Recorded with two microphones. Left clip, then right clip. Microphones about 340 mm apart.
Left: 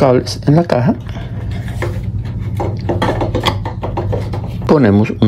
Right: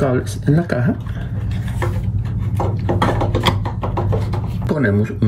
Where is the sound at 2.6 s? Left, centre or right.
Centre.